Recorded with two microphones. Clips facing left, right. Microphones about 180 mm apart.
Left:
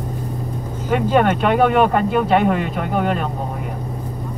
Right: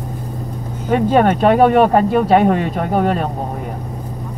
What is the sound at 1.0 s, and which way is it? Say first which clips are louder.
Speech: right 3 dB; 40° right (ahead or behind).